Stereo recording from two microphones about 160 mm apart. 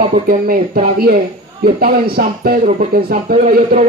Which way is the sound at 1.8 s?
70° right (ahead or behind).